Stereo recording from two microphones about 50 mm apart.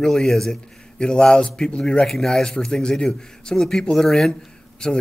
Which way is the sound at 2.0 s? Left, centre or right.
Centre.